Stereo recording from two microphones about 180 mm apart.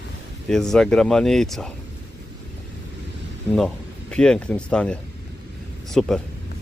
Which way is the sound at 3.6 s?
5° left (ahead or behind).